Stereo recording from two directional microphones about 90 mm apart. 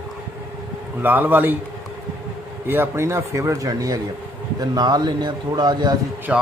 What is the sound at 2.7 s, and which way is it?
A man's voice, 25° right (ahead or behind).